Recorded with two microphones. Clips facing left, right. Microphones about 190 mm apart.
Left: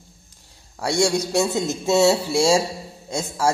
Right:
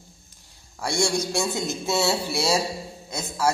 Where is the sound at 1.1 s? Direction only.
20° left (ahead or behind).